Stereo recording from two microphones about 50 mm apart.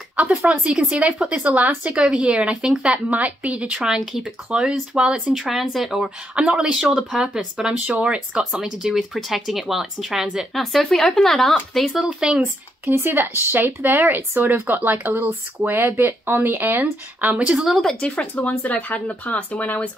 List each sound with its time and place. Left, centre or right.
0.1 s speech: right
3.8 s speech: centre
4.5 s speech: centre
5.3 s speech: centre
6.3 s speech: centre
10.5 s speech: centre
12.2 s speech: centre
12.9 s speech: right
17.5 s speech: centre
18.0 s speech: left